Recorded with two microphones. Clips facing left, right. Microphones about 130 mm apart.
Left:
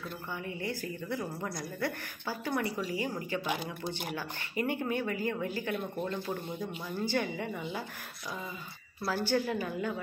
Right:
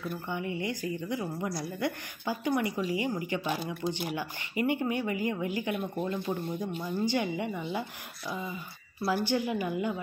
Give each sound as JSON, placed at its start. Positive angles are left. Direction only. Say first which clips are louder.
{"t": 0.1, "sound": "speech", "louder": "right 5 dB", "side_deg": -20}
{"t": 5.9, "sound": "speech", "louder": "right 3 dB", "side_deg": -5}
{"t": 7.1, "sound": "speech", "louder": "right 1 dB", "side_deg": -15}
{"t": 9.1, "sound": "speech", "louder": "right 1 dB", "side_deg": -15}